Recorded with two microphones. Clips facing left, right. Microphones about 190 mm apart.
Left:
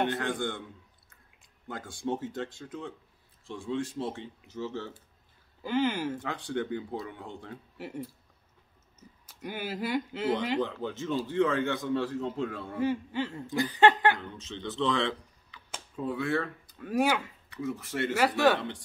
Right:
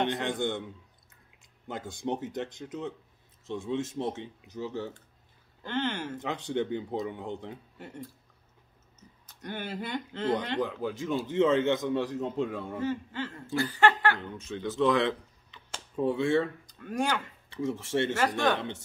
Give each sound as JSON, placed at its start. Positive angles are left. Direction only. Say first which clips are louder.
{"t": 0.0, "sound": "a man's voice", "louder": "right 1 dB", "side_deg": -20}
{"t": 1.7, "sound": "speech", "louder": "even", "side_deg": -20}
{"t": 5.6, "sound": "speech", "louder": "left 4 dB", "side_deg": 10}
{"t": 6.1, "sound": "speech", "louder": "right 2 dB", "side_deg": -20}
{"t": 7.7, "sound": "speech", "louder": "left 4 dB", "side_deg": 5}
{"t": 9.2, "sound": "speech", "louder": "left 1 dB", "side_deg": 10}
{"t": 10.6, "sound": "a man's voice", "louder": "right 1 dB", "side_deg": -10}
{"t": 12.7, "sound": "speech", "louder": "left 6 dB", "side_deg": 10}
{"t": 14.6, "sound": "speech", "louder": "right 4 dB", "side_deg": -15}
{"t": 16.6, "sound": "speech", "louder": "left 3 dB", "side_deg": 5}
{"t": 17.5, "sound": "speech", "louder": "right 4 dB", "side_deg": -25}
{"t": 18.1, "sound": "speech", "louder": "left 7 dB", "side_deg": 10}